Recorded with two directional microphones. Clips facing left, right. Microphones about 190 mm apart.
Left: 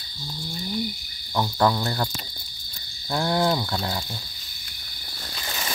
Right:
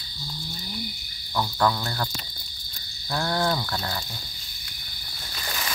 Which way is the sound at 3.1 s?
15° left (ahead or behind).